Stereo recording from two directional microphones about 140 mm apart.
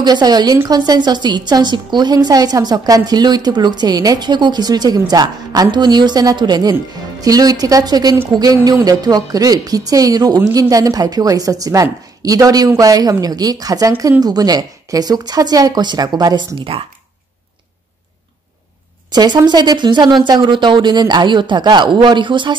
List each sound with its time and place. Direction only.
0.0 s a woman's voice: 30° right (ahead or behind)
19.1 s speech: 30° right (ahead or behind)